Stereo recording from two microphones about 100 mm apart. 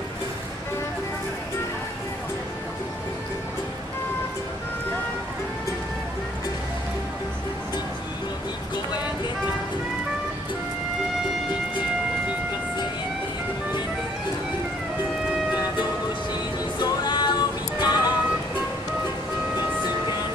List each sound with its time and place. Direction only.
16.8 s music: 45° left (ahead or behind)